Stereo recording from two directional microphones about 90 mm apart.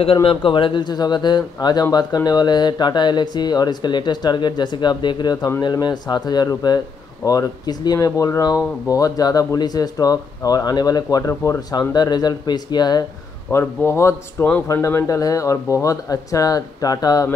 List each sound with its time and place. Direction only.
0.0 s speech: 85° left; by 13.0 s 50° left (ahead or behind)
13.5 s a man's voice: 30° left (ahead or behind); by 17.3 s 45° left (ahead or behind)